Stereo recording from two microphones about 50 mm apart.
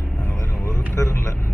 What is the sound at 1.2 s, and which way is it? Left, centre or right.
Vehicle, left.